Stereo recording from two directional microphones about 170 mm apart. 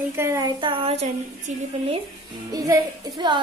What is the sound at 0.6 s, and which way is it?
Speech, 30° right (ahead or behind).